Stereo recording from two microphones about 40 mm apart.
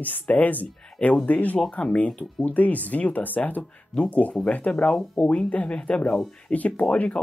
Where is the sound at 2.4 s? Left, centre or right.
Left.